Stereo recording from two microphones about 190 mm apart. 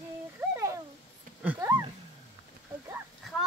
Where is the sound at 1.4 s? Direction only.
10° right (ahead or behind).